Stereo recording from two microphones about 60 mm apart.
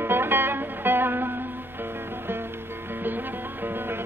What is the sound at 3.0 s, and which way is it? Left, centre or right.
Music, right.